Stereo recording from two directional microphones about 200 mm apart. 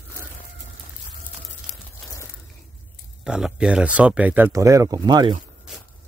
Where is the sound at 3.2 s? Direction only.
5° right (ahead or behind); by 5.3 s 20° right (ahead or behind).